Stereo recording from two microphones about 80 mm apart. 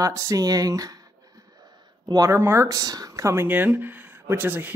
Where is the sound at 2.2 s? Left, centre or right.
Right.